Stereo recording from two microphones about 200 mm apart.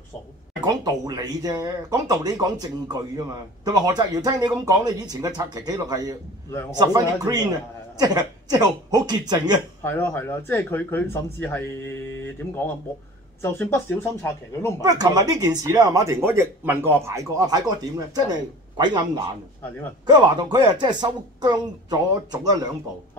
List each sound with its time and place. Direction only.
0.7 s speech: 20° right (ahead or behind)
9.8 s speech: 10° left (ahead or behind)
13.4 s speech: 10° left (ahead or behind)
14.8 s speech: 20° right (ahead or behind)